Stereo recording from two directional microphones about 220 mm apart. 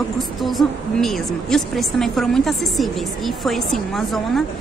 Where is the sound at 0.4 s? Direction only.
Centre (ahead or behind).